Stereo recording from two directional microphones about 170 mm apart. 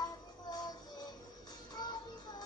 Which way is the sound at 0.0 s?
25° left (ahead or behind).